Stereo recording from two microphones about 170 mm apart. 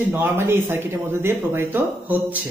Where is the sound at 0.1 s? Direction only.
15° right (ahead or behind).